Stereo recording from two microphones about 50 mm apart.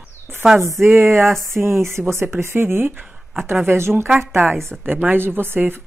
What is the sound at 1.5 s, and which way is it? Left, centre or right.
Speech, right.